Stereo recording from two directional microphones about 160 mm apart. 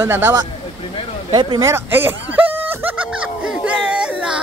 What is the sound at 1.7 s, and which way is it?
Speech, 15° right (ahead or behind).